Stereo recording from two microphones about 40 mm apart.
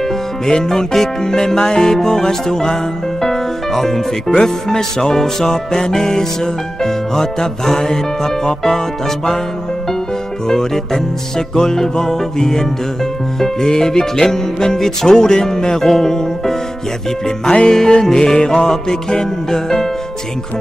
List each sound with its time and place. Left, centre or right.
0.0 s music: centre
10.5 s music: centre
17.6 s music: centre